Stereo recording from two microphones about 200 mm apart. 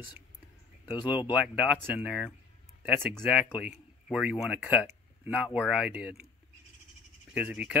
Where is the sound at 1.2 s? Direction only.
5° right (ahead or behind).